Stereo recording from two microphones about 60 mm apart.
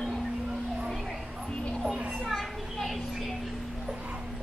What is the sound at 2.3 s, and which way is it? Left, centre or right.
Children playing, centre.